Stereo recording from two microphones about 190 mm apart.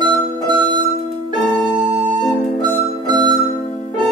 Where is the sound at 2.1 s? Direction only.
25° right (ahead or behind).